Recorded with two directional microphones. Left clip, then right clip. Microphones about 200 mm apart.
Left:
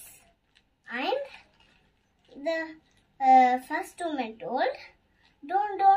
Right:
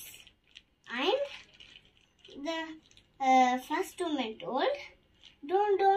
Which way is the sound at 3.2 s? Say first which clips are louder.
Left 6 dB; 20° left (ahead or behind).